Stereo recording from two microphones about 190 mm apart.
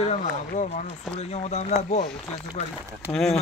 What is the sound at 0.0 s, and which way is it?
Speech, 35° left (ahead or behind).